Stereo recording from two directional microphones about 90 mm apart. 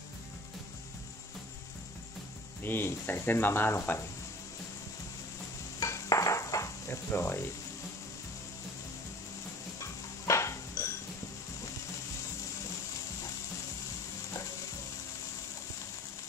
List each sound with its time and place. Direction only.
2.6 s speech: 25° left (ahead or behind)
5.8 s stir: 35° left (ahead or behind)
7.1 s speech: 25° left (ahead or behind)
9.8 s a sound: 35° left (ahead or behind)